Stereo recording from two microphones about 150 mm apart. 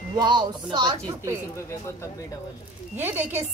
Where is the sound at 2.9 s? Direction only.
15° right (ahead or behind).